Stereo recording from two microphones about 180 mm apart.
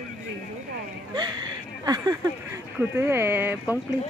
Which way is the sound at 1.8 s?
20° right (ahead or behind).